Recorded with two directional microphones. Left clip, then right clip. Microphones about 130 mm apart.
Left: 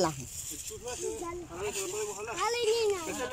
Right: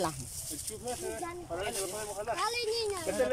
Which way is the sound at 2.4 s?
Centre (ahead or behind).